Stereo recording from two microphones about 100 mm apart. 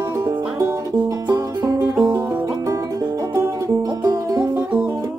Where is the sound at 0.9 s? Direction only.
40° right (ahead or behind).